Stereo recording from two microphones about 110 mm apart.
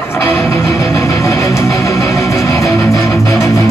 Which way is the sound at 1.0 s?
25° left (ahead or behind).